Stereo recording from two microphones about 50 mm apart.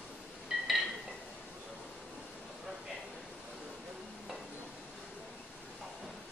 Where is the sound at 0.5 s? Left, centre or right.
Centre.